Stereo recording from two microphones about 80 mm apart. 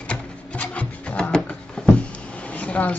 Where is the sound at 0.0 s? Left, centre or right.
Centre.